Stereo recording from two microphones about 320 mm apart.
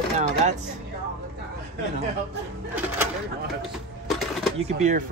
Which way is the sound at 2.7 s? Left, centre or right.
Centre.